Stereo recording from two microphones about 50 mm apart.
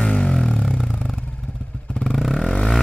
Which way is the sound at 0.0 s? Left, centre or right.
Left.